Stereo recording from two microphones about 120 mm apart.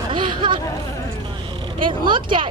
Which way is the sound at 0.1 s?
40° right (ahead or behind).